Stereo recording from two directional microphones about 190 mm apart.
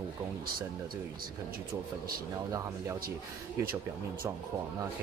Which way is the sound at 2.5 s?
15° right (ahead or behind).